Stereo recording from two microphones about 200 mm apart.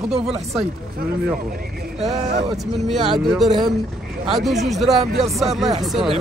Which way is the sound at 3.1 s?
Centre (ahead or behind).